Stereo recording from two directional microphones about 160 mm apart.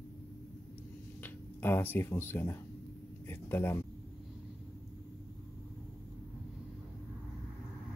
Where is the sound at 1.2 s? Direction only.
15° left (ahead or behind).